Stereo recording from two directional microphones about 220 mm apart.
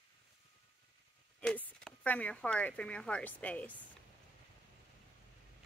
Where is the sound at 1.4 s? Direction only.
5° left (ahead or behind).